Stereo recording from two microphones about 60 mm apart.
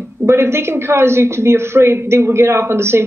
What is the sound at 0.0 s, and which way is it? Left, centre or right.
Speech, right.